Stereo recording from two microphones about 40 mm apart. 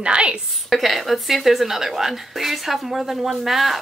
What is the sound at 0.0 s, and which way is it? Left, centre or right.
Speech, right.